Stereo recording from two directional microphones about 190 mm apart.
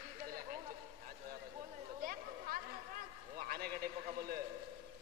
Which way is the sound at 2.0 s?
50° right (ahead or behind).